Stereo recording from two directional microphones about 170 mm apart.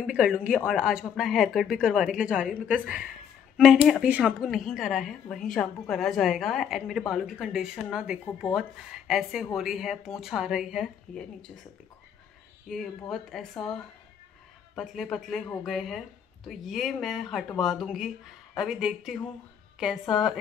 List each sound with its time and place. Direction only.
0.0 s a woman's voice: 5° right (ahead or behind)
12.6 s a woman's voice: centre (ahead or behind)